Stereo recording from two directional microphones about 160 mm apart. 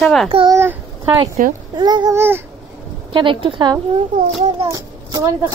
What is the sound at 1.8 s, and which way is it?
Speech, 25° right (ahead or behind).